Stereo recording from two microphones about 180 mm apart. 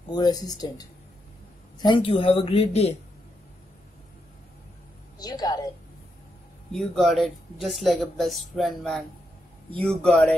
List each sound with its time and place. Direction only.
0.1 s speech: 20° left (ahead or behind)
5.2 s a woman's voice: 20° left (ahead or behind)
6.7 s speech: centre (ahead or behind)